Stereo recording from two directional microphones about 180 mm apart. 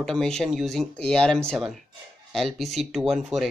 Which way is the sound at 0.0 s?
5° left (ahead or behind).